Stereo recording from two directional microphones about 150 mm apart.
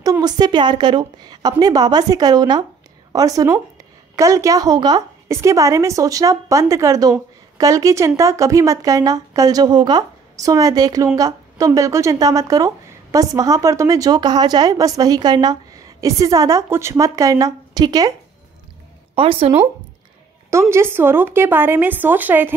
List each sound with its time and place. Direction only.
0.0 s a woman's voice: 25° right (ahead or behind)
19.1 s speech: 35° right (ahead or behind)
20.4 s speech: 20° right (ahead or behind)